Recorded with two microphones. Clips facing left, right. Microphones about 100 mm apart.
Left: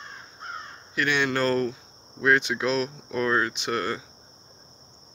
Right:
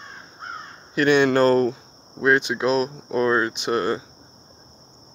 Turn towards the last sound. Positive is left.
turn(degrees=-25)  # may be behind; listen again after turning